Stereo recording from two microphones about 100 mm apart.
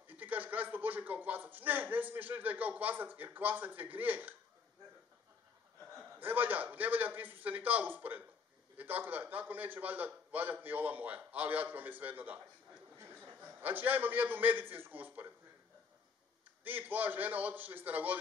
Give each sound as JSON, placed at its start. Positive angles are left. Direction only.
{"t": 0.0, "sound": "speech", "side_deg": -20}
{"t": 6.1, "sound": "a man's voice", "side_deg": -20}
{"t": 16.6, "sound": "speech", "side_deg": -15}